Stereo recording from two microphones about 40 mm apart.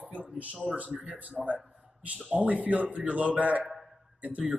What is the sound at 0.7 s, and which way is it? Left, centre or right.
A man's voice, right.